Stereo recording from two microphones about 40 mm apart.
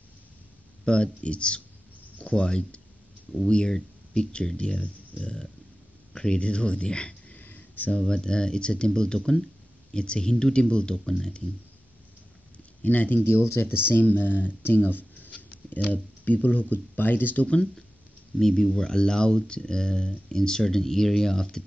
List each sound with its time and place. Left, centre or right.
0.8 s speech: left
6.1 s a sound: centre
6.4 s speech: left
7.3 s a sound: left
8.1 s speech: centre
12.8 s speech: left
13.2 s speech: left
13.8 s speech: left
14.8 s a sound: left
15.3 s speech: left
18.4 s speech: centre